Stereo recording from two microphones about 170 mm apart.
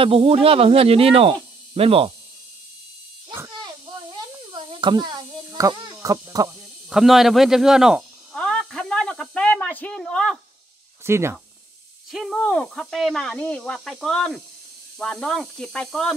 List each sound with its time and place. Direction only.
0.0 s speech: 35° right (ahead or behind)
3.3 s electric shaver: 25° right (ahead or behind)
4.5 s a sound: 30° right (ahead or behind)
6.0 s speech: 20° right (ahead or behind)
6.9 s snake: centre (ahead or behind)
11.1 s speech: 15° right (ahead or behind)
12.1 s speech: centre (ahead or behind)